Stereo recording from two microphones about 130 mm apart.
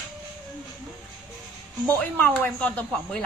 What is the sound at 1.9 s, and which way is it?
Speech, 10° left (ahead or behind).